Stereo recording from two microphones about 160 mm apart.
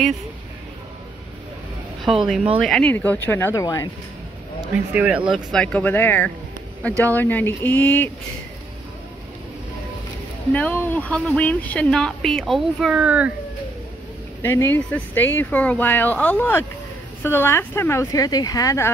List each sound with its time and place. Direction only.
2.0 s speech: centre (ahead or behind)
2.9 s speech: 10° left (ahead or behind)
4.9 s speech: 5° right (ahead or behind); by 8.1 s 10° left (ahead or behind)
10.5 s speech: 10° left (ahead or behind); by 13.3 s 10° right (ahead or behind)
14.4 s speech: 15° left (ahead or behind)